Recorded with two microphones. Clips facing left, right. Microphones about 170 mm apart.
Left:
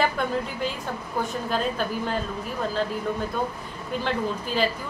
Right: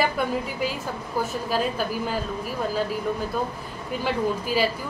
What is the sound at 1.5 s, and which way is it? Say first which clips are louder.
Speech: right 1 dB; 5° right (ahead or behind).